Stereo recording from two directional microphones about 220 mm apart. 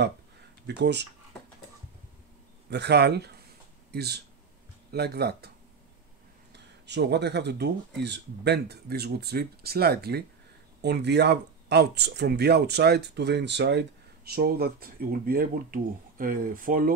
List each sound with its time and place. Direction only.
0.7 s speech: 50° right (ahead or behind)
2.7 s speech: 50° right (ahead or behind)
6.5 s speech: 50° right (ahead or behind)